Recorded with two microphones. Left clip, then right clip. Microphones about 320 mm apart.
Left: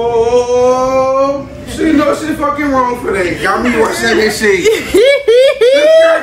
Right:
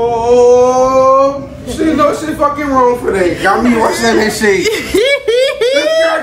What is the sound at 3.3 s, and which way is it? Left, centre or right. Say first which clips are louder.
Speech: right 1 dB; centre.